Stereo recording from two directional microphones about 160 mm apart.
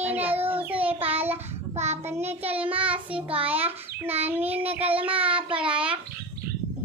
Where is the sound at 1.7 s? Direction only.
45° right (ahead or behind).